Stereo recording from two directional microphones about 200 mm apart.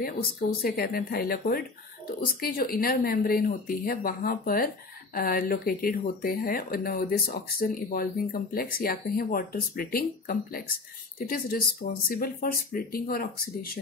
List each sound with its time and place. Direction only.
0.0 s speech: 50° left (ahead or behind)